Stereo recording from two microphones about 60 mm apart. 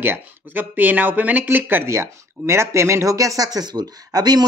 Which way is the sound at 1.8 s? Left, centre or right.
Right.